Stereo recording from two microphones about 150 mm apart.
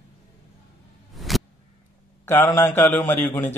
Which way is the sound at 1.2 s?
Centre (ahead or behind).